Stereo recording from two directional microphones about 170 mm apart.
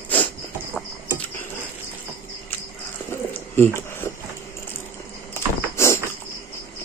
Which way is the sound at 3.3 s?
15° left (ahead or behind).